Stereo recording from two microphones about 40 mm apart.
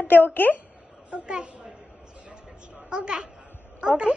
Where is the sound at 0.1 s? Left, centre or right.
Left.